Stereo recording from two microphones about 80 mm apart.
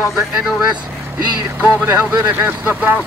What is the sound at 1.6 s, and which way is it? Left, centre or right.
Speech, centre.